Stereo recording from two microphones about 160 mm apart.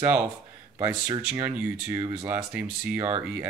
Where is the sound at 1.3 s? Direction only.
15° right (ahead or behind).